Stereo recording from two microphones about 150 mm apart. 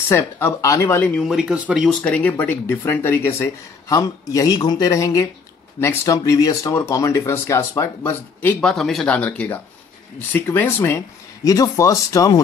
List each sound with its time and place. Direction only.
0.1 s speech: 15° left (ahead or behind)
1.0 s speech: 5° left (ahead or behind); by 12.4 s 25° left (ahead or behind)